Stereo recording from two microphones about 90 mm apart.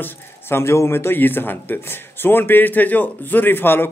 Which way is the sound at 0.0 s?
25° left (ahead or behind).